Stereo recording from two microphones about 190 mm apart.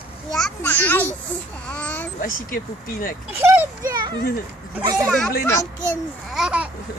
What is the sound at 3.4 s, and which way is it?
Speech, 15° right (ahead or behind).